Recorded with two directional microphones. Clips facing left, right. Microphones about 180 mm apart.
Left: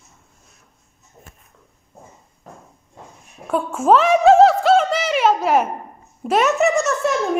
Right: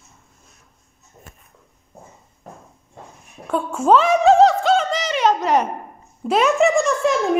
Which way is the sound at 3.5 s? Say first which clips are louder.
Even; 5° left (ahead or behind).